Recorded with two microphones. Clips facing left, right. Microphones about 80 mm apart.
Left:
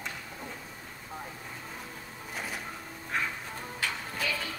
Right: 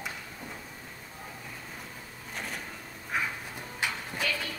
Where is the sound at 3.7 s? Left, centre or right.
Centre.